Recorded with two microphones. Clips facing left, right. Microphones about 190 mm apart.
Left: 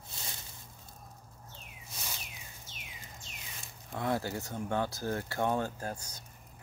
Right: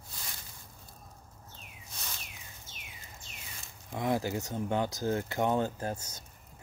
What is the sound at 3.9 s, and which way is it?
Speech, 15° right (ahead or behind).